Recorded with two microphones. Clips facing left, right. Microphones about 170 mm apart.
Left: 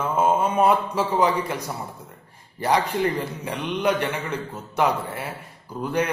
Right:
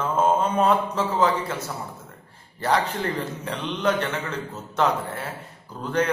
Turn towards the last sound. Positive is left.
turn(degrees=10)  # may be behind; listen again after turning